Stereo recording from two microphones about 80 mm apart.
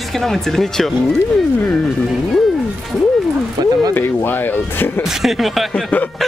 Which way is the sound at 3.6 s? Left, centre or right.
Right.